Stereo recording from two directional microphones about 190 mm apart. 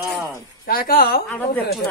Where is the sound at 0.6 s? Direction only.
50° left (ahead or behind).